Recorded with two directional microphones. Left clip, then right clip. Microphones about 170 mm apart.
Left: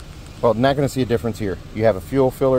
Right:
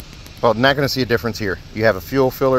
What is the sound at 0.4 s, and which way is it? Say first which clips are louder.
Speech: right 2 dB; 5° right (ahead or behind).